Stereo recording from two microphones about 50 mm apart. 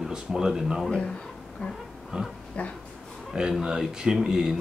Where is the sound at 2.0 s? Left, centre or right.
Centre.